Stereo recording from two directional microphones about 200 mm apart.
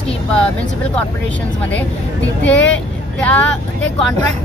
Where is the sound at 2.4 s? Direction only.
5° left (ahead or behind).